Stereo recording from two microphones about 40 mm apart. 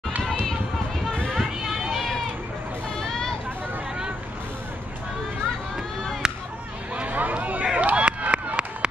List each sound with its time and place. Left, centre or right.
1.4 s run: centre
3.0 s hubbub: centre
6.2 s chop: centre
7.0 s a sound: right
7.6 s run: right